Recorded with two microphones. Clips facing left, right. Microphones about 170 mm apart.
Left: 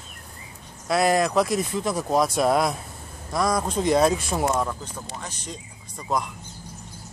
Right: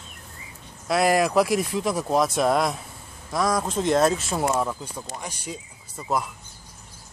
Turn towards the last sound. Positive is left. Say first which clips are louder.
# even
turn(degrees=-5)  # may be behind; listen again after turning